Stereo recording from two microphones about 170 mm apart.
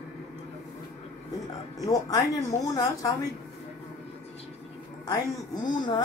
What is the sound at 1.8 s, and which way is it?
Speech, 20° left (ahead or behind).